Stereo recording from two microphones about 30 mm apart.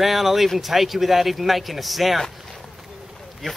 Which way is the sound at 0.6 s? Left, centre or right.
Centre.